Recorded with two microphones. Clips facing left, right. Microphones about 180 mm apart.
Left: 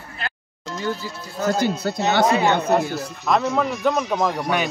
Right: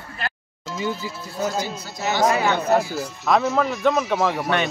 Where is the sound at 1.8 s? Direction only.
60° left (ahead or behind).